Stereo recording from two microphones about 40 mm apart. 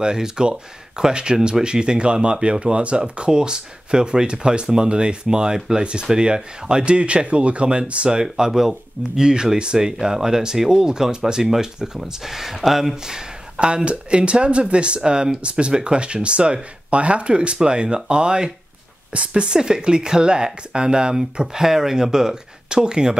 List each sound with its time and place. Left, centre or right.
0.0 s speech: centre
11.4 s speech: centre
12.9 s a sound: centre
13.7 s speech: right